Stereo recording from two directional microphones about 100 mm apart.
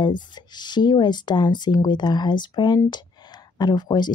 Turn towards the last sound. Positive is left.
turn(degrees=45)  # may be behind; listen again after turning